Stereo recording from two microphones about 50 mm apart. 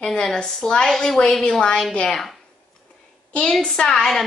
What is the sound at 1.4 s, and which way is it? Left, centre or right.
Speech, centre.